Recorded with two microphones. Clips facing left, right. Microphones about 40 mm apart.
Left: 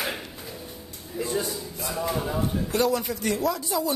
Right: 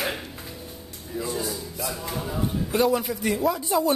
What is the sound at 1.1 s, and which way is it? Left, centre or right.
Speech, centre.